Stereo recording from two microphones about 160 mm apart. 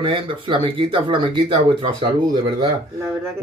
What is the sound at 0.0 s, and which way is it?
Speech, 35° right (ahead or behind).